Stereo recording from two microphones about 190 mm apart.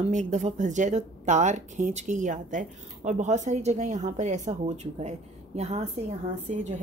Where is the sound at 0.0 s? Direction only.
40° right (ahead or behind).